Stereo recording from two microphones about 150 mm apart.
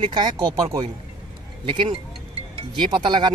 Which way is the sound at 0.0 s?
30° right (ahead or behind).